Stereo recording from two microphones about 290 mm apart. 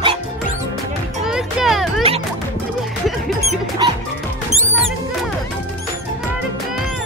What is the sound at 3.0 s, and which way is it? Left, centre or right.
Music, centre.